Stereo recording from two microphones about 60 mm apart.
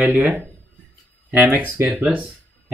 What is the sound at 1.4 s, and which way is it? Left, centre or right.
Speech, right.